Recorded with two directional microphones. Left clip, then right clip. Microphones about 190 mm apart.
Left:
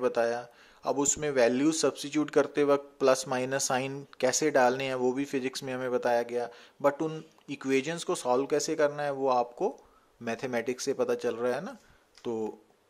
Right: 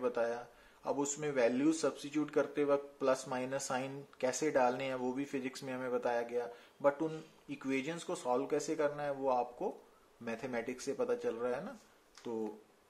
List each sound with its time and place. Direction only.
0.0 s a man's voice: 45° left (ahead or behind)